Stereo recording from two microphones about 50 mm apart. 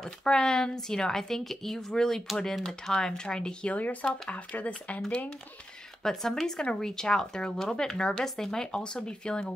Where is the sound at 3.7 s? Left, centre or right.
Left.